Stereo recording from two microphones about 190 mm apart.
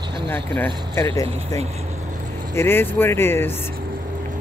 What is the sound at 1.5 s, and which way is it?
Vehicle, 35° right (ahead or behind).